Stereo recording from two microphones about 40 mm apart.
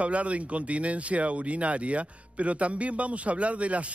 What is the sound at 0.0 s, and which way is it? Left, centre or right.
Speech, right.